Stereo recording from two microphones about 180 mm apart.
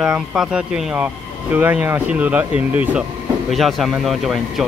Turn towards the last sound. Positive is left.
turn(degrees=0)  # may be behind; listen again after turning